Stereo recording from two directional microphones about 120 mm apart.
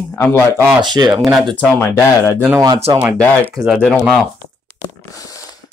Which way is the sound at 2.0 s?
25° left (ahead or behind).